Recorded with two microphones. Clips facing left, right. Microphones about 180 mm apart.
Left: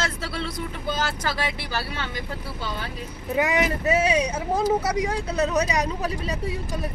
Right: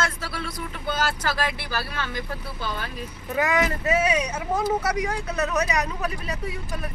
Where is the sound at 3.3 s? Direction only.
20° left (ahead or behind).